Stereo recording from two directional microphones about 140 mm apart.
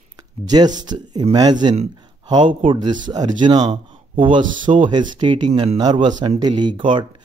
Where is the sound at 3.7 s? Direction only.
50° right (ahead or behind).